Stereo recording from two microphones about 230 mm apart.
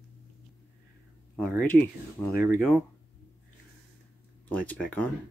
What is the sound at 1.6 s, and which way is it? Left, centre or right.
Speech, centre.